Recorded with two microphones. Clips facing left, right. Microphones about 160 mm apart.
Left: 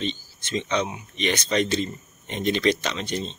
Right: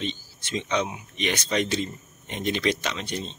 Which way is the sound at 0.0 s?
10° right (ahead or behind).